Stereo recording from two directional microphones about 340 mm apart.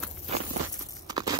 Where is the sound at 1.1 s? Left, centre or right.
Centre.